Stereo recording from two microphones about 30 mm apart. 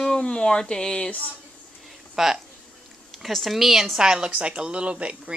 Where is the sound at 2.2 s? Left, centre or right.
Centre.